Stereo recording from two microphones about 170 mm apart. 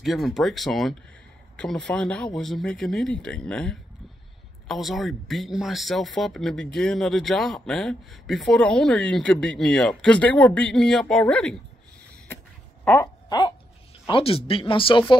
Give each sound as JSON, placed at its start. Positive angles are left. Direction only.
{"t": 0.0, "sound": "speech", "side_deg": 0}
{"t": 12.8, "sound": "speech", "side_deg": 15}
{"t": 14.0, "sound": "speech", "side_deg": 30}